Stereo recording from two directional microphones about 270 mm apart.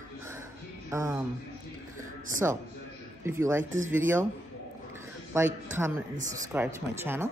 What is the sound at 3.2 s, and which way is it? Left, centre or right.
A woman's voice, centre.